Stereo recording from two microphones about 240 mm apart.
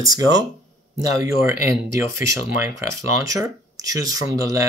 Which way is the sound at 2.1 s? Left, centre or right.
Centre.